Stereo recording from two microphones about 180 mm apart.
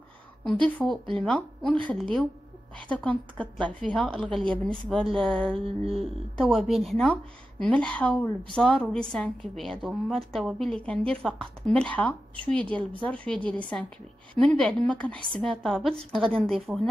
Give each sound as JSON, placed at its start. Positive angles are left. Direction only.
{"t": 0.4, "sound": "a woman's voice", "side_deg": 5}
{"t": 2.9, "sound": "a woman's voice", "side_deg": 5}